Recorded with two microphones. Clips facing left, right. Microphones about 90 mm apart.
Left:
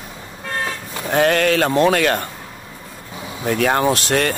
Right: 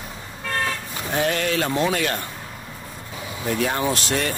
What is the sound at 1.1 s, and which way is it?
Speech, 70° left (ahead or behind).